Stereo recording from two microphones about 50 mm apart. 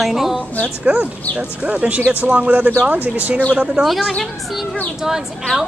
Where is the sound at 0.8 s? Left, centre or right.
Right.